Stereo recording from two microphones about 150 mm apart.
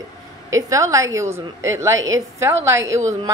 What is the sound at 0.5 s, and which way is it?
A woman's voice, 20° right (ahead or behind).